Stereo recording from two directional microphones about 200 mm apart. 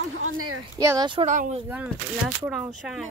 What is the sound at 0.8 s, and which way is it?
Speech, 20° right (ahead or behind).